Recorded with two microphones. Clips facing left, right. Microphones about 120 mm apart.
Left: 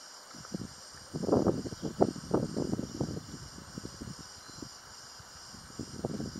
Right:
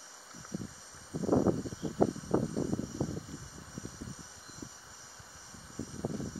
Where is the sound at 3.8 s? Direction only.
25° left (ahead or behind).